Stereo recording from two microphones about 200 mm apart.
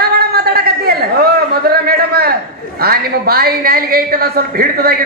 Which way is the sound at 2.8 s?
50° right (ahead or behind).